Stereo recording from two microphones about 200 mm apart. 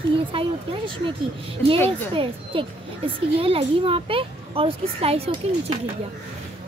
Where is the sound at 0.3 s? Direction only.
25° right (ahead or behind).